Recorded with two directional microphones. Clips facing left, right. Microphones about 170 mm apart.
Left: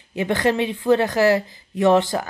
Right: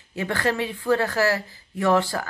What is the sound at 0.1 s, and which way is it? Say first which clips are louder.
Speech: left 5 dB; 20° left (ahead or behind).